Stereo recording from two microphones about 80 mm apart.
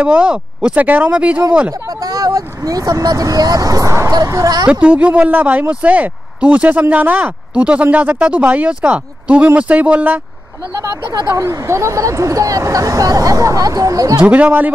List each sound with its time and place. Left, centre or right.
0.0 s speech: centre
1.7 s speech: right
4.6 s speech: centre
11.3 s speech: right
14.2 s speech: right